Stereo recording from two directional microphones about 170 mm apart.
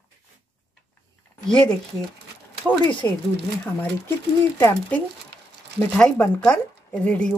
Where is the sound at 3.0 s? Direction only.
20° left (ahead or behind).